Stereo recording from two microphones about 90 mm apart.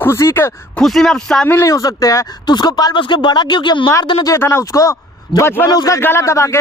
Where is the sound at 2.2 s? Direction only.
50° left (ahead or behind).